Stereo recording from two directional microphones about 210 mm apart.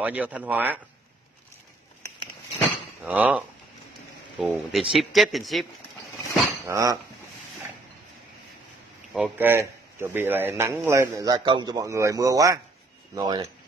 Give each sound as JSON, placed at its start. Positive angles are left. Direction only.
{"t": 0.0, "sound": "a man's voice", "side_deg": -5}
{"t": 3.0, "sound": "a man's voice", "side_deg": -5}
{"t": 6.6, "sound": "a man's voice", "side_deg": -15}
{"t": 9.1, "sound": "a man's voice", "side_deg": -5}